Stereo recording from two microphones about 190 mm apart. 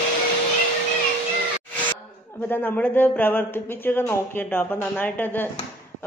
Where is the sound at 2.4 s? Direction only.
10° left (ahead or behind).